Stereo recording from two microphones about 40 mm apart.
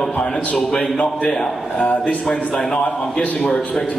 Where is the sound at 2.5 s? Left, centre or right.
Centre.